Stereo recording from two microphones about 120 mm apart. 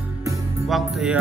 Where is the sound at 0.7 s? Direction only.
5° right (ahead or behind).